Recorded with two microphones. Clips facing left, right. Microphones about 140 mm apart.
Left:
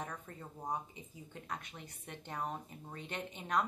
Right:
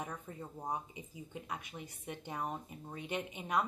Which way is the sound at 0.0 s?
10° right (ahead or behind).